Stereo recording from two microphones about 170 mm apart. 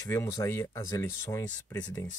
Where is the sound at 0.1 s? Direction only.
15° left (ahead or behind).